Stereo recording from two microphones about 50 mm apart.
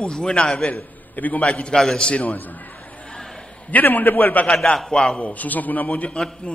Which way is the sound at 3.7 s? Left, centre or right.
Left.